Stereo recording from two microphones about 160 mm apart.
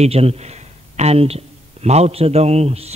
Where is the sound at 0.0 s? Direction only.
40° right (ahead or behind).